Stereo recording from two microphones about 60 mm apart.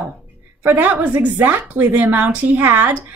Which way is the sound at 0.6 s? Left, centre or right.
Right.